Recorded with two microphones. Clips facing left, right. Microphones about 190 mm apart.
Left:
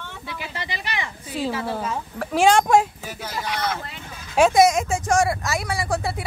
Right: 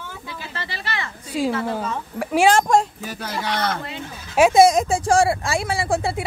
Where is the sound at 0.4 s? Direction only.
15° left (ahead or behind).